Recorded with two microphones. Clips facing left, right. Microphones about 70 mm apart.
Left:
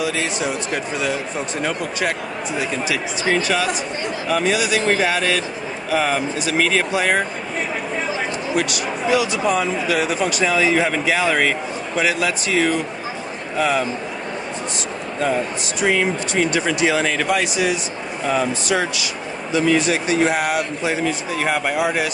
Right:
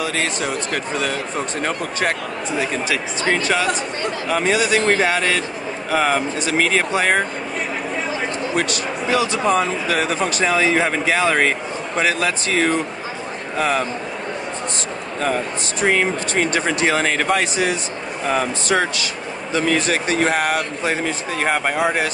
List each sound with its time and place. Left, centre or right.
0.0 s speech: right
8.5 s speech: right
15.8 s speech: right